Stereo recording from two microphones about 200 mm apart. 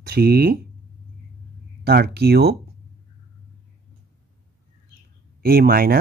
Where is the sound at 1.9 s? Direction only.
55° right (ahead or behind).